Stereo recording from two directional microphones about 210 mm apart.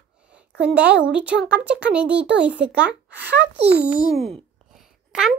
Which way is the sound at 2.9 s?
55° right (ahead or behind).